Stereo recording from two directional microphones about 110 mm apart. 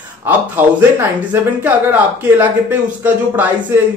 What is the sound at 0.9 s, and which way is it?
Speech, 15° right (ahead or behind).